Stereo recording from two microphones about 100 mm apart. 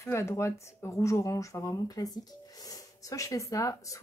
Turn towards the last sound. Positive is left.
turn(degrees=35)  # may be behind; listen again after turning